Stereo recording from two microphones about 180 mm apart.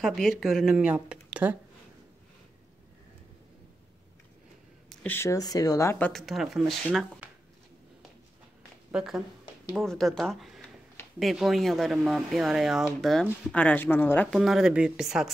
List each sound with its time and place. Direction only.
0.0 s speech: centre (ahead or behind)
4.8 s speech: 10° left (ahead or behind)
8.9 s speech: centre (ahead or behind)
14.4 s speech: centre (ahead or behind)